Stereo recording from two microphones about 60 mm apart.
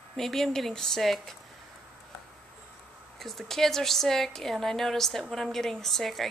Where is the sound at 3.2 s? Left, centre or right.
Centre.